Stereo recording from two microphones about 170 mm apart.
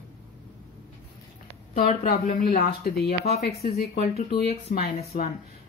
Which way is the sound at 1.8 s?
35° left (ahead or behind).